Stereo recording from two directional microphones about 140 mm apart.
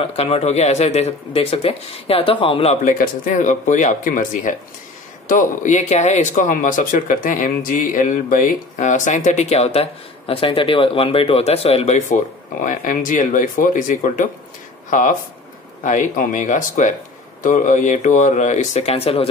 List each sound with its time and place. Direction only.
0.0 s speech: 45° left (ahead or behind)
2.8 s speech: 70° left (ahead or behind); by 12.2 s 50° left (ahead or behind)
12.6 s speech: 75° left (ahead or behind); by 19.2 s 45° left (ahead or behind)